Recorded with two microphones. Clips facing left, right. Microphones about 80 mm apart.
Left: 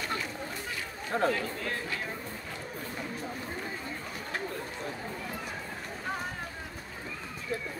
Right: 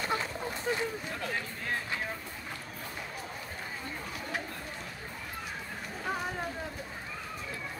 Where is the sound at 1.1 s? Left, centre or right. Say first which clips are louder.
Left 11 dB; left.